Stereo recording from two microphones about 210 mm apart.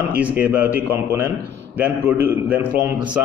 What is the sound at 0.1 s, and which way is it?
A man's voice, 5° right (ahead or behind).